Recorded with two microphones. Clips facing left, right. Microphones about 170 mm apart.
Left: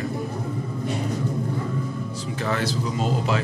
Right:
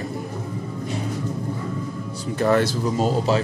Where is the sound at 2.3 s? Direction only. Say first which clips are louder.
Right 7 dB; 50° right (ahead or behind).